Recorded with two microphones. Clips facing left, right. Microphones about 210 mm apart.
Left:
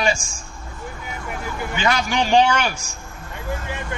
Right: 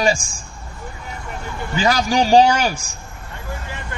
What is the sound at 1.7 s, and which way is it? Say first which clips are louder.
A man's voice: right 4 dB; 35° right (ahead or behind).